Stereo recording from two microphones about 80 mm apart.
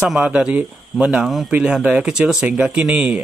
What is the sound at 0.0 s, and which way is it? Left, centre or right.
Speech, centre.